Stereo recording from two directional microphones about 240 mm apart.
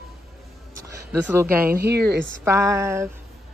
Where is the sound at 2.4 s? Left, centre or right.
Centre.